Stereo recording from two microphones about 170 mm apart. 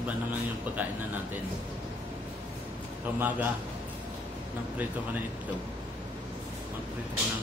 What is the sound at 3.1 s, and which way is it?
Speech, 10° right (ahead or behind).